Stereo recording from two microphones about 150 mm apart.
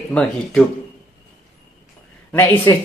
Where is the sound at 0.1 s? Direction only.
5° left (ahead or behind).